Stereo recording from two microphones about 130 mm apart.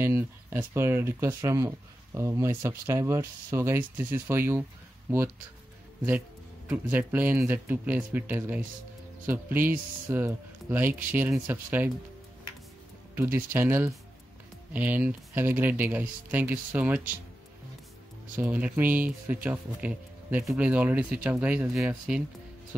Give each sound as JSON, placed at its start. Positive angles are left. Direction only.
{"t": 0.0, "sound": "speech", "side_deg": -20}
{"t": 6.7, "sound": "speech", "side_deg": -15}
{"t": 13.1, "sound": "speech", "side_deg": -15}
{"t": 18.3, "sound": "speech", "side_deg": -10}